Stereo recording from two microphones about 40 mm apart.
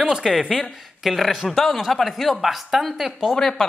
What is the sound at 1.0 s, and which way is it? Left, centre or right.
Speech, centre.